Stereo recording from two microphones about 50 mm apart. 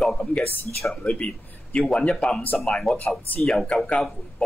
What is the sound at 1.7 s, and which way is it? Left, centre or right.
Speech, centre.